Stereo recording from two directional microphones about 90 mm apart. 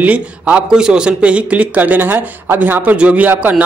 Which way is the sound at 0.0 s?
15° right (ahead or behind).